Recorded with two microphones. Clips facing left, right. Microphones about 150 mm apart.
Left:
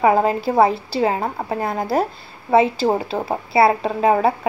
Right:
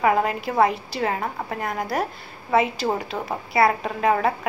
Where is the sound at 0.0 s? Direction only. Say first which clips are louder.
Left 5 dB; 30° left (ahead or behind).